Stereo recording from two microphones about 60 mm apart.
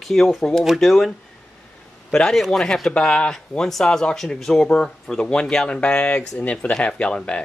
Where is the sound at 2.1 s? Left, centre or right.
Centre.